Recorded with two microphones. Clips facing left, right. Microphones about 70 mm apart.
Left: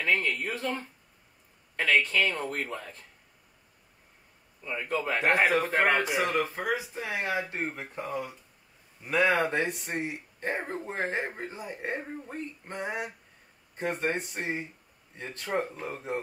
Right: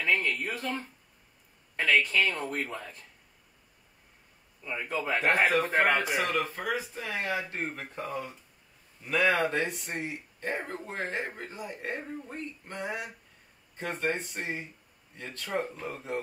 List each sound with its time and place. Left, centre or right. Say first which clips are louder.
0.0 s a sound: left 1 dB; centre
1.8 s speech: even; centre
4.6 s speech: left 1 dB; centre
5.2 s speech: left 1 dB; left
5.5 s speech: even; centre
6.4 s speech: left 2 dB; centre